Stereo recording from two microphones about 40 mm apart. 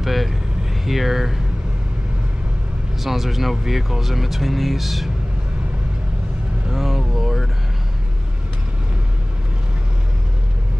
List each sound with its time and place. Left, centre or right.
0.0 s vehicle: centre
0.8 s speech: centre
3.0 s speech: centre
6.7 s vehicle: centre